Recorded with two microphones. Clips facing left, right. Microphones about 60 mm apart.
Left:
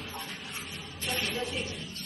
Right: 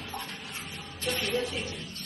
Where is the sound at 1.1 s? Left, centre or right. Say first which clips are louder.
Right 3 dB; centre.